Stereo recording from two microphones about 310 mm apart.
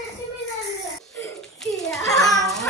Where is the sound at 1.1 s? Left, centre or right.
Centre.